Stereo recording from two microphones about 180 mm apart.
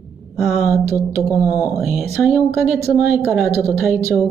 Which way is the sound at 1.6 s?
Centre (ahead or behind).